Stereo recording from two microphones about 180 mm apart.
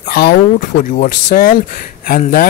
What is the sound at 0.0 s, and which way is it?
Speech, 55° left (ahead or behind).